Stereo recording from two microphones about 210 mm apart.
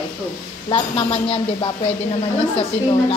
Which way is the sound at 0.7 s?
25° left (ahead or behind).